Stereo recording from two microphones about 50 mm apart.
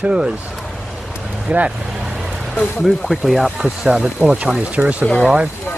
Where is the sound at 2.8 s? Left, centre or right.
Centre.